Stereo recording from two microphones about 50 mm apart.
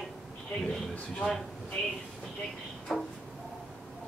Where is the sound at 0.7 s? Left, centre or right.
Centre.